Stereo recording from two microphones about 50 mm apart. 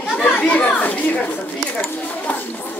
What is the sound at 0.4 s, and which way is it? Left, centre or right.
Children playing, left.